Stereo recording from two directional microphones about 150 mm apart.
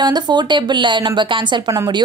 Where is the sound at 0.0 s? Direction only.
30° right (ahead or behind).